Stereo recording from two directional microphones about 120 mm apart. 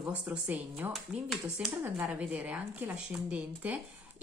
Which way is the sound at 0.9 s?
Centre (ahead or behind).